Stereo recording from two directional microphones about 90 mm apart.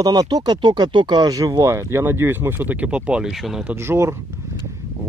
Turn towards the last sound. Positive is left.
turn(degrees=-30)  # may be behind; listen again after turning